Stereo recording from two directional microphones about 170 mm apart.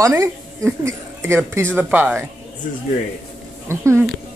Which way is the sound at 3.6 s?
15° right (ahead or behind).